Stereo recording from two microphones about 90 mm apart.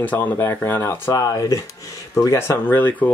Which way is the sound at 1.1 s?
40° left (ahead or behind).